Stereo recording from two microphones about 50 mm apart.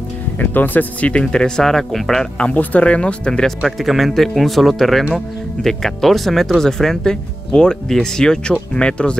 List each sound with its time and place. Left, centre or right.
0.4 s speech: left
1.1 s speech: centre
2.3 s speech: left; by 3.7 s centre
3.8 s speech: centre; by 9.1 s left